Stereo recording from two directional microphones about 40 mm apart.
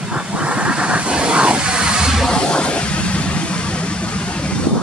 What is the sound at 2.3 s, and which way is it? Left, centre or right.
Vehicle, left.